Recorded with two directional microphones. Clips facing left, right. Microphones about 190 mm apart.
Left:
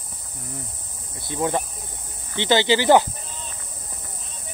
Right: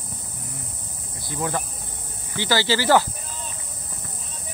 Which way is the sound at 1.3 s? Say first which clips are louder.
Left 4 dB; 20° left (ahead or behind).